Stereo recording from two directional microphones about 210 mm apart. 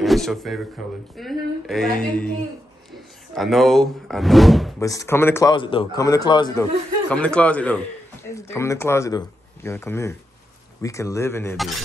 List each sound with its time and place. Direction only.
0.0 s a man's voice: centre (ahead or behind)
3.3 s speech: centre (ahead or behind)
4.7 s speech: 15° left (ahead or behind)
7.1 s a man's voice: 5° left (ahead or behind)
11.5 s speech: centre (ahead or behind)